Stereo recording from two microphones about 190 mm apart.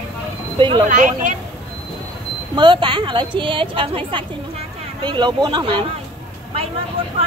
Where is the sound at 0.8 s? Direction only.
40° right (ahead or behind).